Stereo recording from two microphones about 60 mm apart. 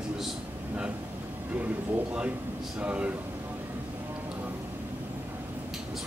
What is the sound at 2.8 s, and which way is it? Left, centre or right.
Speech, right.